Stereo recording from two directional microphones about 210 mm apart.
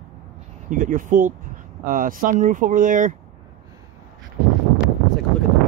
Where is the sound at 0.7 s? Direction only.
40° right (ahead or behind).